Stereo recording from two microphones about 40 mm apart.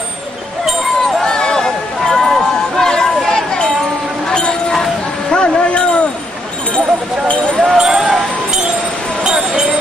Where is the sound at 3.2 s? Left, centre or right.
Left.